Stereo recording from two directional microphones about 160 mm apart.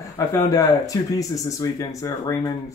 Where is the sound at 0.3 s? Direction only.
20° left (ahead or behind).